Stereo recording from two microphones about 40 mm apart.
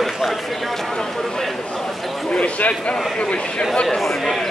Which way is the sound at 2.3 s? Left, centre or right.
Left.